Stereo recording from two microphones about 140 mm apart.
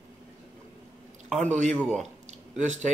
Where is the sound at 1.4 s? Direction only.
60° right (ahead or behind).